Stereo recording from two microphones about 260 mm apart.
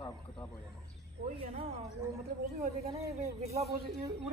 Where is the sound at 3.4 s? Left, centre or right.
Right.